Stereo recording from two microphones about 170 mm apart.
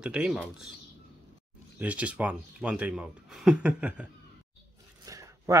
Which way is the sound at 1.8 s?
10° right (ahead or behind).